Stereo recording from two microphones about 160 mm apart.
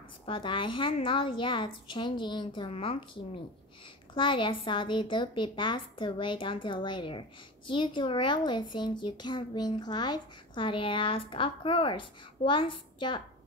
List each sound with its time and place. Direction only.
0.3 s a woman's voice: 30° left (ahead or behind)
4.1 s speech: 30° left (ahead or behind)